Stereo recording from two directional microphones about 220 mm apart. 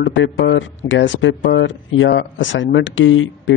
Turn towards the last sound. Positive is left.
turn(degrees=60)  # may be behind; listen again after turning